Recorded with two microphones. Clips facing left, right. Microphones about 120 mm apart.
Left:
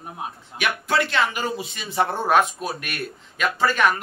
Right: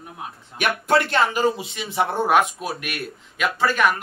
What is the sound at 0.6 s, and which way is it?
Speech, 50° right (ahead or behind).